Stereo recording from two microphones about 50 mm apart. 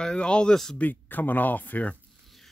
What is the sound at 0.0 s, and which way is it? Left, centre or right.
Speech, centre.